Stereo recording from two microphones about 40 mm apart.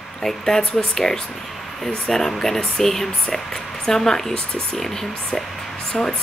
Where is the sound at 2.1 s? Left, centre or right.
Centre.